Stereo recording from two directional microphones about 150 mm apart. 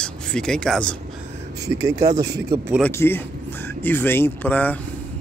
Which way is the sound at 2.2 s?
90° right.